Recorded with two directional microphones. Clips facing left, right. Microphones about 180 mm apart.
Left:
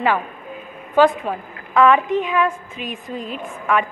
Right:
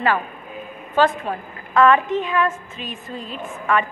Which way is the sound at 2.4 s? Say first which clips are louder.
Left 2 dB; 15° left (ahead or behind).